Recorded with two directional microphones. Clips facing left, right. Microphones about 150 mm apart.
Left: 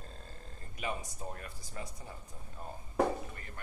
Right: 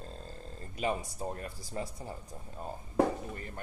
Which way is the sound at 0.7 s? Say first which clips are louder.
Right 6 dB; 30° right (ahead or behind).